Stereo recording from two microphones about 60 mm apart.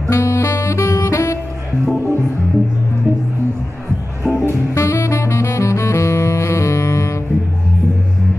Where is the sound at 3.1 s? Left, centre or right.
Right.